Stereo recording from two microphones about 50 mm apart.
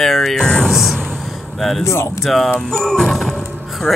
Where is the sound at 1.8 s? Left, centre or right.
Left.